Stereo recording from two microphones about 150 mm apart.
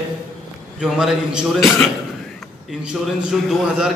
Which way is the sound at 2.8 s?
5° right (ahead or behind).